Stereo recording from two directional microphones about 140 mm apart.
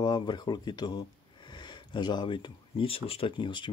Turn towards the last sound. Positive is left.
turn(degrees=35)  # may be behind; listen again after turning